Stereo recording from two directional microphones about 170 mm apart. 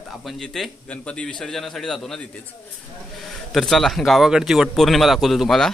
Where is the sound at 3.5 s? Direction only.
Centre (ahead or behind).